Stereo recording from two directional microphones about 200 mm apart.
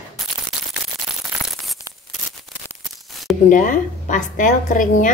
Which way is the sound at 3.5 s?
40° left (ahead or behind).